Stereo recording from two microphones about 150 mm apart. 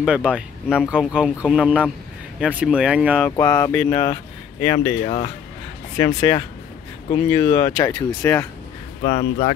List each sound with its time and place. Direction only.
0.0 s speech: 5° right (ahead or behind)
3.2 s speech: 15° left (ahead or behind)
5.0 s speech: 40° left (ahead or behind)
5.9 s speech: 25° left (ahead or behind)
9.0 s speech: 55° left (ahead or behind)